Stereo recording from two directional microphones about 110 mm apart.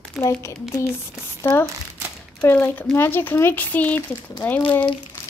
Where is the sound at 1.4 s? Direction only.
20° left (ahead or behind).